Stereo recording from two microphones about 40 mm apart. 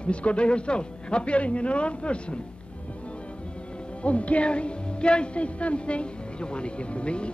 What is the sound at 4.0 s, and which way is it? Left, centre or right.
Speech, left.